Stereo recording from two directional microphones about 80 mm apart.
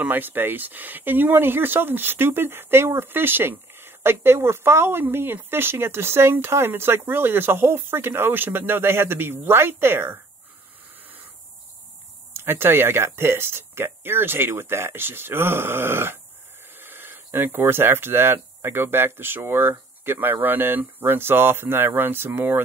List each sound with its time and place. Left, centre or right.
0.0 s speech: right
12.4 s speech: right